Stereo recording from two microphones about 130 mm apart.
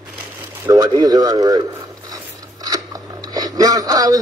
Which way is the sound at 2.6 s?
25° right (ahead or behind).